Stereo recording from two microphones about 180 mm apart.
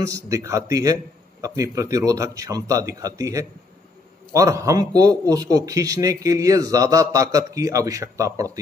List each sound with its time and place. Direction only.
0.0 s a man's voice: 20° right (ahead or behind)